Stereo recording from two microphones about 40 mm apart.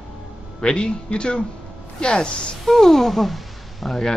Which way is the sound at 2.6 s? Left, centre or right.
Centre.